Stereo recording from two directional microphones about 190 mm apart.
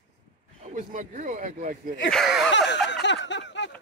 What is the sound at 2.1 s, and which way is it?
Speech, centre (ahead or behind).